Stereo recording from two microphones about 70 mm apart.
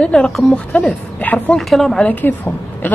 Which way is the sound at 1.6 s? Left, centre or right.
Centre.